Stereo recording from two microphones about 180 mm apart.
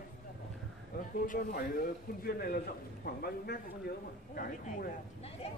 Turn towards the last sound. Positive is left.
turn(degrees=55)  # may be behind; listen again after turning